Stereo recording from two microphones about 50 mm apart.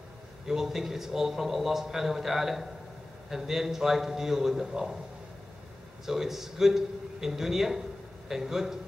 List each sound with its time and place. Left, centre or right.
0.5 s a man's voice: centre
6.0 s a man's voice: centre